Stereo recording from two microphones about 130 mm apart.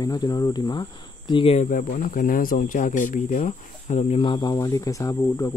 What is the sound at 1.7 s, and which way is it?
Speech, 90° left.